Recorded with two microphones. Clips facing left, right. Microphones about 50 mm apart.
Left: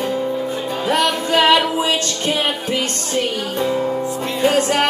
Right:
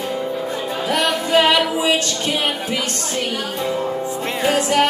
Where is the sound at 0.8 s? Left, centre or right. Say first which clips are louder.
Left 2 dB; left.